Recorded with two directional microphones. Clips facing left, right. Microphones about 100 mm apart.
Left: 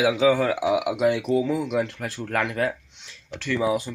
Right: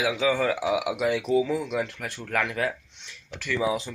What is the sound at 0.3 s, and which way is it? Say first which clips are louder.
Speech: left 3 dB; 20° left (ahead or behind).